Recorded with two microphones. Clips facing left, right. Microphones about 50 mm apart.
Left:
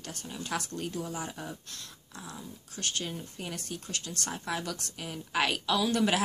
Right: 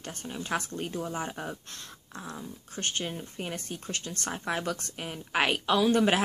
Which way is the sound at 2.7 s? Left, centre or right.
Right.